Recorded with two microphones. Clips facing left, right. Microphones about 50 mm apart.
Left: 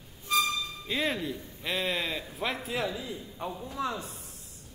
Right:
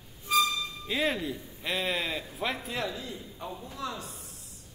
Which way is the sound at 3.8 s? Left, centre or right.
Left.